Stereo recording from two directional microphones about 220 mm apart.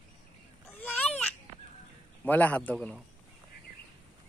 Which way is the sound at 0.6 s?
5° left (ahead or behind).